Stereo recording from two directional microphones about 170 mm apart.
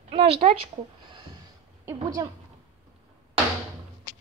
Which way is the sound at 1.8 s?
20° right (ahead or behind).